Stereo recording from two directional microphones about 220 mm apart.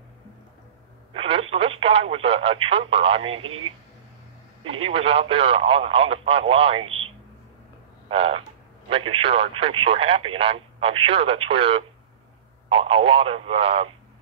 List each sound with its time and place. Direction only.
1.1 s speech: 25° right (ahead or behind)
4.6 s speech: 25° right (ahead or behind)
8.1 s speech: 25° right (ahead or behind)